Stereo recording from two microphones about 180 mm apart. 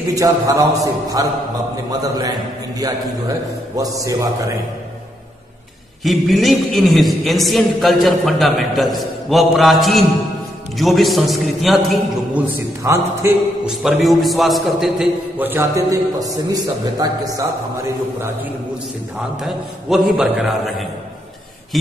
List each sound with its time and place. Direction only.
0.0 s a man's voice: 20° right (ahead or behind)
6.0 s a man's voice: centre (ahead or behind)
12.5 s a man's voice: 15° right (ahead or behind)
13.7 s a man's voice: centre (ahead or behind); by 17.5 s 20° right (ahead or behind)
19.4 s a man's voice: centre (ahead or behind)